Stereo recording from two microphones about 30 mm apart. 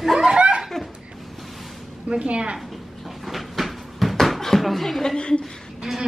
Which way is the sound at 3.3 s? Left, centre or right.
Centre.